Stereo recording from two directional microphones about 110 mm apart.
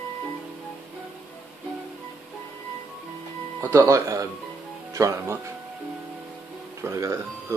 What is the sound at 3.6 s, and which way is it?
Speech, 25° right (ahead or behind).